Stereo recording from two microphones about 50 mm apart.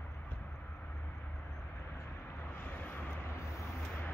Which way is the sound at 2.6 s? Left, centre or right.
Left.